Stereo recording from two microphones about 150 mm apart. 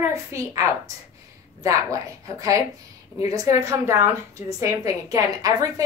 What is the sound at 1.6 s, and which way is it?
A woman's voice, 20° right (ahead or behind).